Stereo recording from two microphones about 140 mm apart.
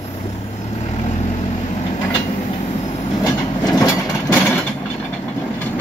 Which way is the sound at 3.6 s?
15° left (ahead or behind).